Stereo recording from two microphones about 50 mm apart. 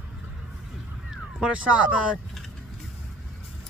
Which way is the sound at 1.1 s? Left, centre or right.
Centre.